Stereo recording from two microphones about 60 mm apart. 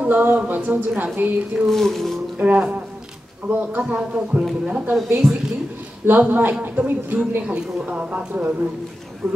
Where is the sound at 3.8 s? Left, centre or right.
Right.